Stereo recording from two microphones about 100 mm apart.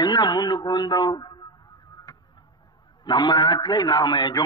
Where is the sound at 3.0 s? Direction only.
50° left (ahead or behind).